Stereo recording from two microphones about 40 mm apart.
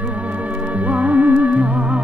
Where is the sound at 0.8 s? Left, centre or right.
Right.